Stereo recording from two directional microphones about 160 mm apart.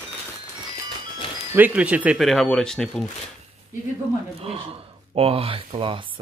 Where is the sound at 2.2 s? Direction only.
Centre (ahead or behind).